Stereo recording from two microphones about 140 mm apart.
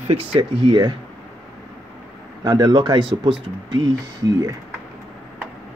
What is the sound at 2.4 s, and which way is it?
Speech, 30° right (ahead or behind).